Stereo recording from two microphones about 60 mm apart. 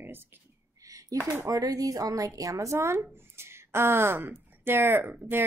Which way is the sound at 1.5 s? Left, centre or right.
Right.